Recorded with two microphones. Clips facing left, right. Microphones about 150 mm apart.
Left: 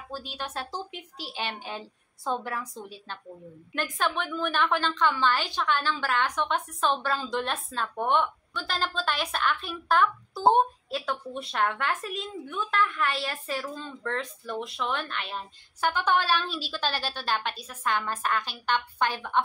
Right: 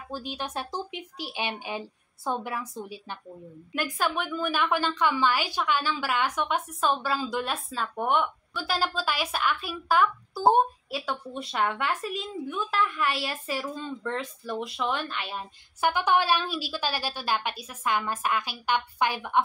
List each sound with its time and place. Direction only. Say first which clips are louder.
0.1 s a woman's voice: right 2 dB; 15° right (ahead or behind)